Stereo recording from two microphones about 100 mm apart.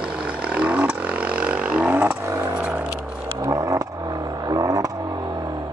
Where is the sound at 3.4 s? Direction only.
35° right (ahead or behind).